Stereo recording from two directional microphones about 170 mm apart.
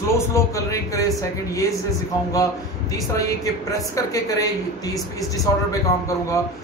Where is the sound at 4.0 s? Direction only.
20° left (ahead or behind).